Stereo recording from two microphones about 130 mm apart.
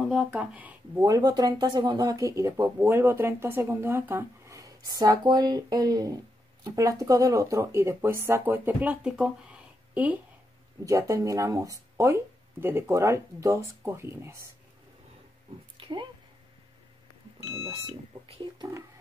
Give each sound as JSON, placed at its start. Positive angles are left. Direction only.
{"t": 0.0, "sound": "speech", "side_deg": -5}
{"t": 1.0, "sound": "speech", "side_deg": -30}
{"t": 10.9, "sound": "speech", "side_deg": -25}
{"t": 15.8, "sound": "a sound", "side_deg": -40}
{"t": 18.3, "sound": "speech", "side_deg": -35}